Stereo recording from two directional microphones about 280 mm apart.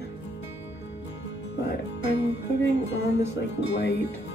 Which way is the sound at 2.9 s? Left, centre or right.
Left.